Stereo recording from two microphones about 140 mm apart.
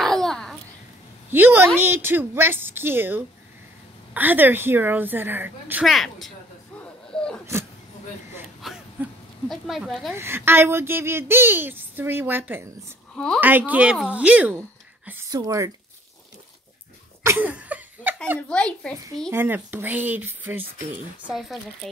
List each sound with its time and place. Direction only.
0.0 s babbling: 5° left (ahead or behind)
1.3 s speech: 15° right (ahead or behind)
5.9 s a woman's voice: centre (ahead or behind)
6.8 s a sound: 5° left (ahead or behind)
8.5 s a sound: 5° right (ahead or behind)
10.1 s speech: 15° right (ahead or behind)
13.1 s a woman's voice: 5° left (ahead or behind)
13.4 s speech: 15° right (ahead or behind)
14.6 s a sound: 20° right (ahead or behind)
15.3 s speech: 25° right (ahead or behind)
17.2 s a sound: 15° right (ahead or behind)
18.5 s a child's voice: 5° left (ahead or behind)
19.3 s speech: 15° right (ahead or behind)
21.3 s a woman's voice: centre (ahead or behind)